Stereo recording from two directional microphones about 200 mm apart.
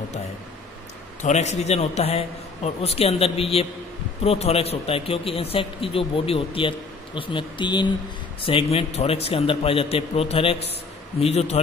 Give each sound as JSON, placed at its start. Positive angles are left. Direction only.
{"t": 1.2, "sound": "a man's voice", "side_deg": 35}